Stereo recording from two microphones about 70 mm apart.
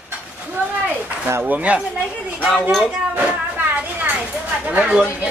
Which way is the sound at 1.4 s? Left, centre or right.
Centre.